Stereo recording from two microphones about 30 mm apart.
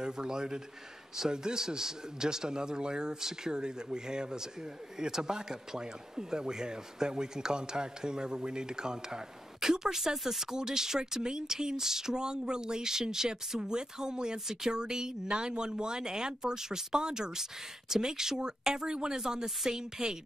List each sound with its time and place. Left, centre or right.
0.0 s speech: right
3.2 s speech: centre
3.5 s speech: right